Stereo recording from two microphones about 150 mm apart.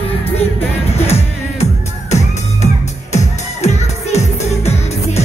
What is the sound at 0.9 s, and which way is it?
Music, 45° left (ahead or behind).